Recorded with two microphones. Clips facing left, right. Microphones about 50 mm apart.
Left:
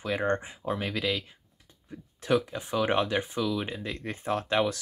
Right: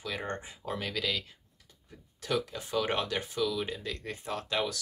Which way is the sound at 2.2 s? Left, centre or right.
Left.